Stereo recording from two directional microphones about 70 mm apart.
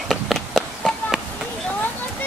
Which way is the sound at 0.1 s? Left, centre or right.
Centre.